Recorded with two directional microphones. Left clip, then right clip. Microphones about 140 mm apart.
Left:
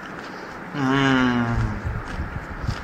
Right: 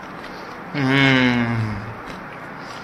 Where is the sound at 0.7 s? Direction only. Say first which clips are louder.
Right 3 dB; 45° right (ahead or behind).